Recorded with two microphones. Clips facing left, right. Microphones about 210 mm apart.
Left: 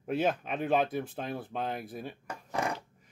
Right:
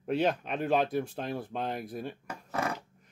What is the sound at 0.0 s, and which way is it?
Speech, 5° left (ahead or behind).